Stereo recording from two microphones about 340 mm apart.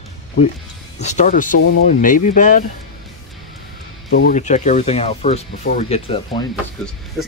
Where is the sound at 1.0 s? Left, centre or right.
Left.